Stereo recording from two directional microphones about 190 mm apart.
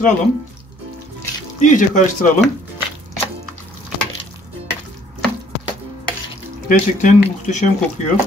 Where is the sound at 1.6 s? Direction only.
40° left (ahead or behind).